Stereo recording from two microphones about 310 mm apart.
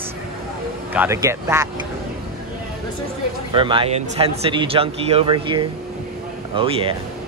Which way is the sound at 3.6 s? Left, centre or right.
Centre.